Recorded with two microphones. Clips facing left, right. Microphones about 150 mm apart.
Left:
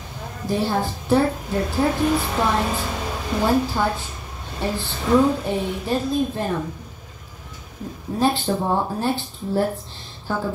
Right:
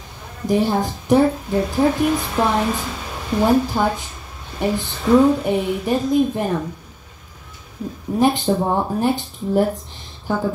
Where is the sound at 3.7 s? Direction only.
15° right (ahead or behind).